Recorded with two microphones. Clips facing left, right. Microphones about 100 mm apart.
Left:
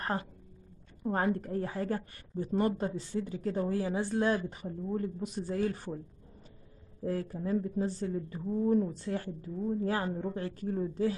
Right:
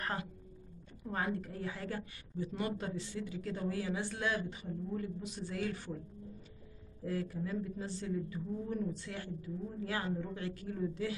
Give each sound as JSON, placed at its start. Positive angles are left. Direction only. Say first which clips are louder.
{"t": 0.0, "sound": "a woman's voice", "louder": "left 5 dB", "side_deg": 35}
{"t": 7.1, "sound": "a woman's voice", "louder": "left 5 dB", "side_deg": 40}